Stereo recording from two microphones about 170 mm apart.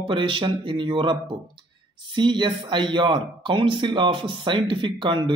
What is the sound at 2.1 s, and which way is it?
Speech, 25° right (ahead or behind).